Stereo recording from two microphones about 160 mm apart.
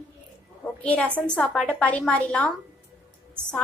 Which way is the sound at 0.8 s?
10° left (ahead or behind).